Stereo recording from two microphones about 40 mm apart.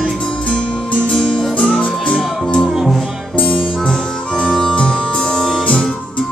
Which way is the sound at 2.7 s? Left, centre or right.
Centre.